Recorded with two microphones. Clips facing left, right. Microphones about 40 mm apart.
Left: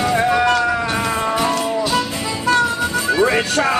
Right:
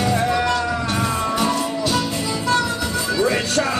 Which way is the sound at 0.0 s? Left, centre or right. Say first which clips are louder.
Left 3 dB; left.